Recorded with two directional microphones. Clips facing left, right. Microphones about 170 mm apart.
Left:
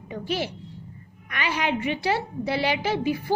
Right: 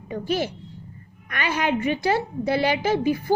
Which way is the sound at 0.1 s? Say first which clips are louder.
Right 3 dB; 45° right (ahead or behind).